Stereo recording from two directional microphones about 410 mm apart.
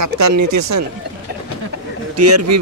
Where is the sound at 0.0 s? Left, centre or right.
Right.